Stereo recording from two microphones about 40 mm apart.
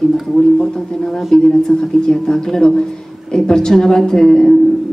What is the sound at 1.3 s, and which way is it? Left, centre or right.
Speech, centre.